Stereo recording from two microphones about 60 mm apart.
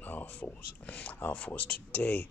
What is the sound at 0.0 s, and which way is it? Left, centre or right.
Speech, left.